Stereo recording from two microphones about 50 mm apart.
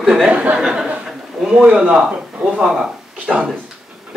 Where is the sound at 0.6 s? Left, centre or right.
Centre.